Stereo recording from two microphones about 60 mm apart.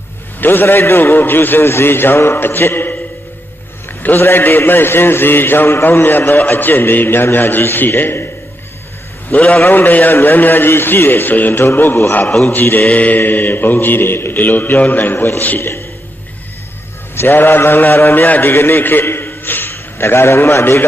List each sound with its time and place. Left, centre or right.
0.4 s a man's voice: left
4.2 s a man's voice: left
9.3 s a man's voice: left
15.1 s a man's voice: left
15.4 s a man's voice: left
17.1 s a man's voice: left